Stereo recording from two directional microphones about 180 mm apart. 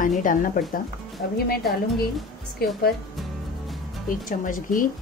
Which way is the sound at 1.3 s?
60° left (ahead or behind).